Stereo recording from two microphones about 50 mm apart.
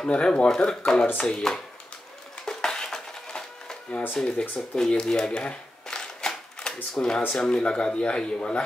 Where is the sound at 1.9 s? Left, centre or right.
Left.